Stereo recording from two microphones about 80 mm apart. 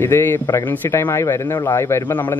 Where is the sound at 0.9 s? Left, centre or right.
Left.